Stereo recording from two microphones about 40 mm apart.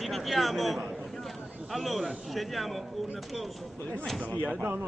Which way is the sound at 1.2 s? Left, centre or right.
Centre.